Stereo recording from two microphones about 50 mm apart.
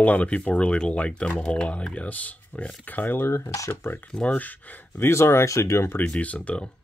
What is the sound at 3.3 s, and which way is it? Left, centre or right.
Speech, left.